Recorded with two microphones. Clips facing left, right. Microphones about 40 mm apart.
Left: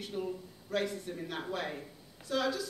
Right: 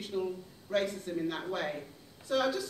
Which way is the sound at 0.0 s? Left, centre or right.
Centre.